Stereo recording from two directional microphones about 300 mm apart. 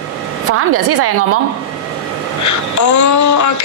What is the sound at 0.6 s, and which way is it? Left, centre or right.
Speech, right.